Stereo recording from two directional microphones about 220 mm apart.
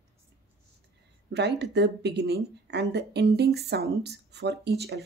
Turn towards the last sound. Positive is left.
turn(degrees=-45)  # may be behind; listen again after turning